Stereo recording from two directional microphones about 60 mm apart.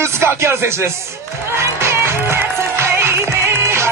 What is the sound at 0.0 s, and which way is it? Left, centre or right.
Speech, right.